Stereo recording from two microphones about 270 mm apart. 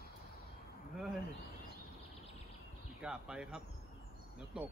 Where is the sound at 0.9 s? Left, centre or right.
Centre.